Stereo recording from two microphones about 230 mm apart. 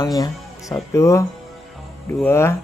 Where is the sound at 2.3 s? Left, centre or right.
Centre.